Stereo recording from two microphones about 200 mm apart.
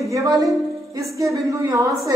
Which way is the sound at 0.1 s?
15° right (ahead or behind).